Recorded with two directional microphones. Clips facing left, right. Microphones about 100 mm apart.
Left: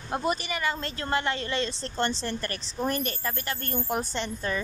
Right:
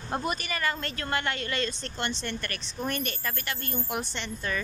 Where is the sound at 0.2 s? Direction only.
25° left (ahead or behind).